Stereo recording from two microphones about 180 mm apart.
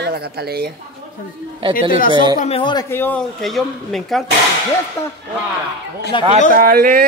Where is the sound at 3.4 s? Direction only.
Centre (ahead or behind).